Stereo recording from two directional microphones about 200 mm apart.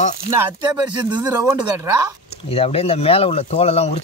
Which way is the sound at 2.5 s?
30° left (ahead or behind).